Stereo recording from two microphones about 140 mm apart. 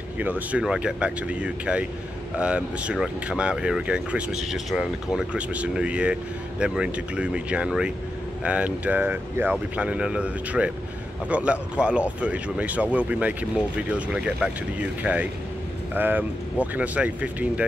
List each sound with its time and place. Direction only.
0.2 s speech: 10° right (ahead or behind)